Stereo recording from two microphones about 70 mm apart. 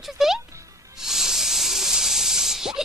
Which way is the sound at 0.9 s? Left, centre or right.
Centre.